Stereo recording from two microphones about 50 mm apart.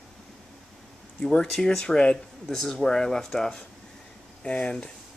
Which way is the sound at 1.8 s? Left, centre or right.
Centre.